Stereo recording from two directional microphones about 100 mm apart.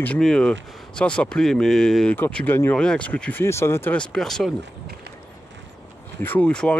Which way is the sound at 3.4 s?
25° left (ahead or behind).